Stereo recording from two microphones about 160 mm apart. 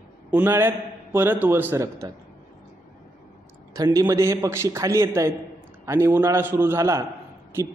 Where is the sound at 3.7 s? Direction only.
20° right (ahead or behind).